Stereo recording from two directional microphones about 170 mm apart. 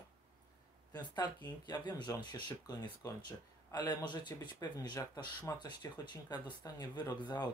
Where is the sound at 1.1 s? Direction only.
25° left (ahead or behind).